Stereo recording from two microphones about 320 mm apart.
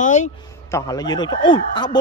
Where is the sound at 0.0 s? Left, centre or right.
Left.